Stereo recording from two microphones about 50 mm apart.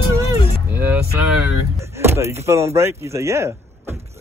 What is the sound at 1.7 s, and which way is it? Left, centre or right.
Speech, right.